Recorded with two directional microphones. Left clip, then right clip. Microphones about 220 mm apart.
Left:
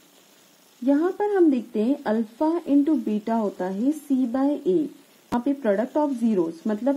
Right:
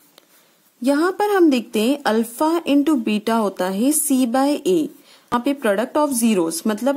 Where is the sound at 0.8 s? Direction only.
30° right (ahead or behind).